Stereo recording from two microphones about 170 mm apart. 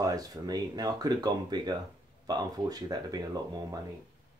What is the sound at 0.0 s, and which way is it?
Speech, 20° right (ahead or behind).